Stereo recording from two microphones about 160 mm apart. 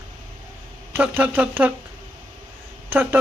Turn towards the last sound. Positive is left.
turn(degrees=-10)  # may be behind; listen again after turning